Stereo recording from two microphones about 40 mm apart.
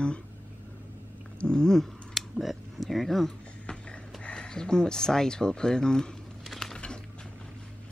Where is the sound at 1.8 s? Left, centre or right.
Centre.